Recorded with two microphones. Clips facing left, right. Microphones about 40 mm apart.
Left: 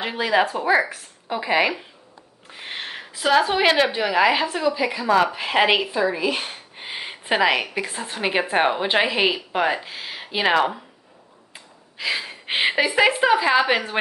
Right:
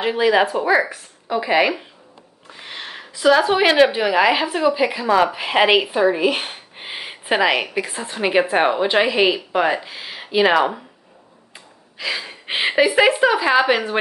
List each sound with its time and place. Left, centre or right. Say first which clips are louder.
0.0 s speech: right 4 dB; centre
2.6 s a woman's voice: left 1 dB; centre
5.9 s speech: right 5 dB; right
6.7 s a woman's voice: right 1 dB; centre
11.5 s a sound: right 1 dB; centre
12.8 s speech: right 4 dB; centre